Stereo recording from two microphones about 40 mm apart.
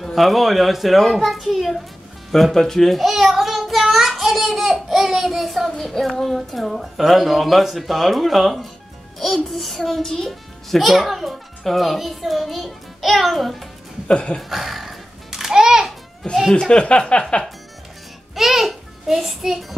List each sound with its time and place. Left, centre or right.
0.0 s a child's voice: centre
3.0 s child singing: centre
3.8 s a sound: centre
5.8 s a child's voice: centre
14.0 s a sound: left
14.5 s music: centre
16.2 s speech: centre
16.7 s a sound: left
18.3 s a child's voice: centre